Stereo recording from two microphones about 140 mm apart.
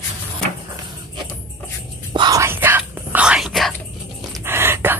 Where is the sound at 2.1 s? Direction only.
30° right (ahead or behind).